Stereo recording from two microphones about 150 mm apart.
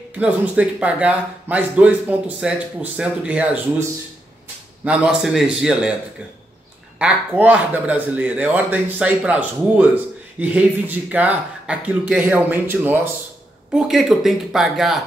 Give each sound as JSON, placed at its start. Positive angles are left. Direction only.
{"t": 0.2, "sound": "speech", "side_deg": -10}
{"t": 4.8, "sound": "speech", "side_deg": -5}
{"t": 7.0, "sound": "speech", "side_deg": -10}
{"t": 13.7, "sound": "speech", "side_deg": 0}